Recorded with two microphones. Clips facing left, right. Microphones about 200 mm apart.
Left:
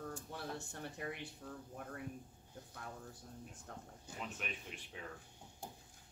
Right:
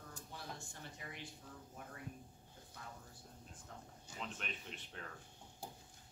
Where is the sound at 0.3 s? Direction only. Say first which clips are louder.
Left 6 dB; 60° left (ahead or behind).